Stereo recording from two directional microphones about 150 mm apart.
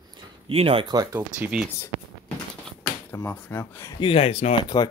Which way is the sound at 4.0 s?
40° left (ahead or behind).